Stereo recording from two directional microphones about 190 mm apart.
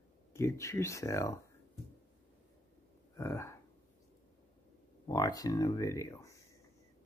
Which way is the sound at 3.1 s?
15° left (ahead or behind).